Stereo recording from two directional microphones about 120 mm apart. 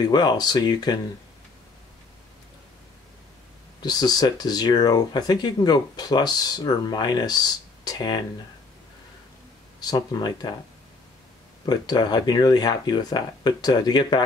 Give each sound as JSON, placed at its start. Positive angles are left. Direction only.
{"t": 0.0, "sound": "speech", "side_deg": 35}
{"t": 3.8, "sound": "speech", "side_deg": 35}
{"t": 9.8, "sound": "speech", "side_deg": 35}
{"t": 11.6, "sound": "speech", "side_deg": 35}